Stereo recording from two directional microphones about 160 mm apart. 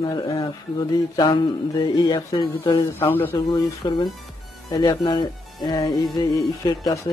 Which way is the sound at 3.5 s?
25° left (ahead or behind).